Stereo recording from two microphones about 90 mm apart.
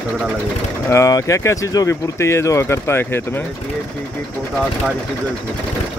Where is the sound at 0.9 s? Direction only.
35° left (ahead or behind).